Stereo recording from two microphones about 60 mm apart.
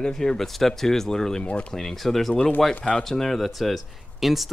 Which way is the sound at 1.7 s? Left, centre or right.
Centre.